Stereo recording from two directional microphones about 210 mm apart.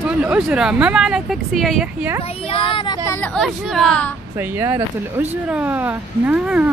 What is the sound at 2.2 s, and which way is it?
Speech, 25° left (ahead or behind).